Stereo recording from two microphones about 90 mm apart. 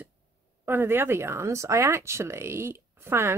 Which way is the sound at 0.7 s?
25° right (ahead or behind).